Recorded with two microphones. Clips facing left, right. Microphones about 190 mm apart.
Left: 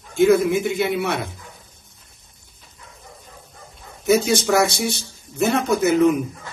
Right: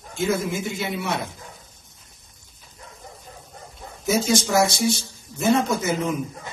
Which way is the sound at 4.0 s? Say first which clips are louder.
Left 4 dB; 60° left (ahead or behind).